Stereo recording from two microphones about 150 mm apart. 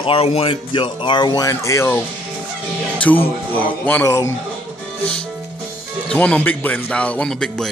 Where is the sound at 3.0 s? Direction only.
10° left (ahead or behind).